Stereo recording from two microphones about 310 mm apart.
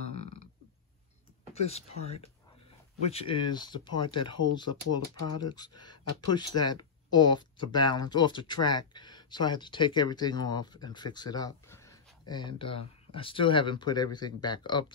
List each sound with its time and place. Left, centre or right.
1.5 s speech: centre
5.2 s speech: left
5.9 s speech: centre